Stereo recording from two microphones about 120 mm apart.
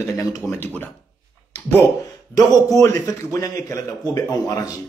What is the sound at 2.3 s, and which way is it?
A man's voice, 30° left (ahead or behind).